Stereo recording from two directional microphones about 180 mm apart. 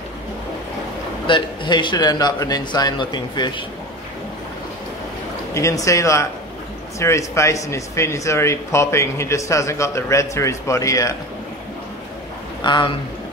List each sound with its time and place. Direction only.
1.2 s a man's voice: 25° left (ahead or behind)
5.5 s speech: 15° left (ahead or behind)
12.6 s a man's voice: 25° left (ahead or behind)